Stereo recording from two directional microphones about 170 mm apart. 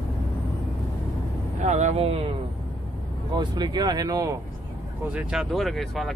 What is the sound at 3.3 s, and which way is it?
Speech, 25° right (ahead or behind).